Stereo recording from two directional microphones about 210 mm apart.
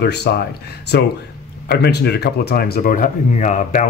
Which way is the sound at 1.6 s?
50° left (ahead or behind).